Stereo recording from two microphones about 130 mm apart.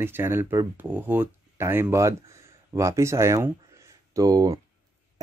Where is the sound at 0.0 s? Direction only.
20° right (ahead or behind).